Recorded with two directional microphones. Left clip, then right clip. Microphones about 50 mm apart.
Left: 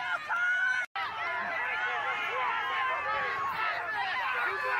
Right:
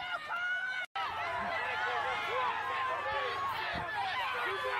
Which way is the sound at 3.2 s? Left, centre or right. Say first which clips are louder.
Left 3 dB; centre.